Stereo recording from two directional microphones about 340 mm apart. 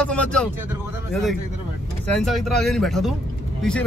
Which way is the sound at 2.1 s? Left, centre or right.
Centre.